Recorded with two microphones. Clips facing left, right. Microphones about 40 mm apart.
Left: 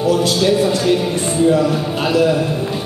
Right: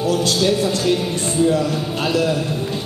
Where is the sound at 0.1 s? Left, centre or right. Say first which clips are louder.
Left 3 dB; centre.